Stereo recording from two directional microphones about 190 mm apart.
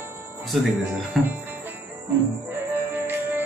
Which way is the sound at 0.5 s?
Centre (ahead or behind).